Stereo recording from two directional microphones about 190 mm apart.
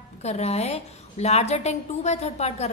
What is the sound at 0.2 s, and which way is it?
A woman's voice, 35° left (ahead or behind).